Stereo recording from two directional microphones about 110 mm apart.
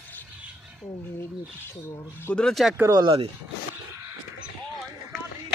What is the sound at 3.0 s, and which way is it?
Speech, 55° right (ahead or behind).